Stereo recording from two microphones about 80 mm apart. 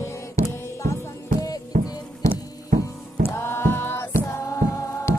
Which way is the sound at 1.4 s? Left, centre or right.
Left.